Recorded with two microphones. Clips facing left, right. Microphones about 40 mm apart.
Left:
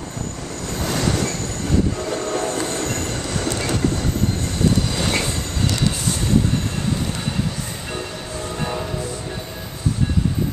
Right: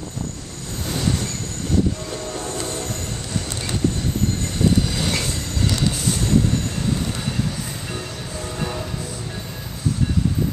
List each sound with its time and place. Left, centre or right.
0.8 s train: left
2.0 s train: left
4.9 s train: centre
7.9 s train: centre